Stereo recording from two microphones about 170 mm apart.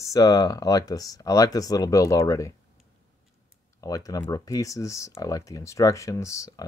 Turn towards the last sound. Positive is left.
turn(degrees=15)  # may be behind; listen again after turning